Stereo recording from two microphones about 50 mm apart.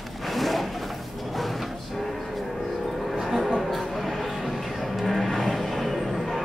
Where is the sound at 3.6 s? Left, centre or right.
Centre.